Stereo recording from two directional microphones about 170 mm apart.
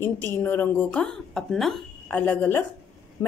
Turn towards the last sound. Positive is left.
turn(degrees=15)  # may be behind; listen again after turning